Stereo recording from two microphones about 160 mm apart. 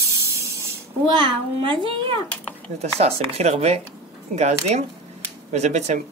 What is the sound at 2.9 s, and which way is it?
A child's voice, 40° right (ahead or behind).